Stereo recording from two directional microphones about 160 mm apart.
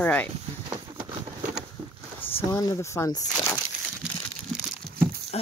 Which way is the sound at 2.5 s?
20° left (ahead or behind).